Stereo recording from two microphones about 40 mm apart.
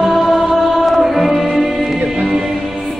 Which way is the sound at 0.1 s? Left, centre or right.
Centre.